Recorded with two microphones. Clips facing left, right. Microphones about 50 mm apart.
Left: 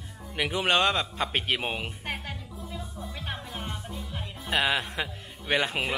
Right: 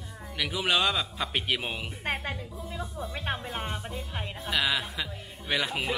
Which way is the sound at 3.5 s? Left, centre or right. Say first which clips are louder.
Right 3 dB; right.